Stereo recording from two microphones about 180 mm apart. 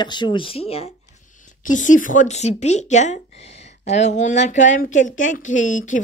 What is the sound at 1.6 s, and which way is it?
A woman's voice, 45° left (ahead or behind).